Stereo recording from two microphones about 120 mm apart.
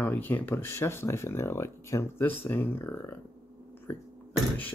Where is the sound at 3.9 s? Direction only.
20° left (ahead or behind).